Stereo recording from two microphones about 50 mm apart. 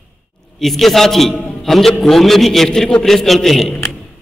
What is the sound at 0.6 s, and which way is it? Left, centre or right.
A man's voice, centre.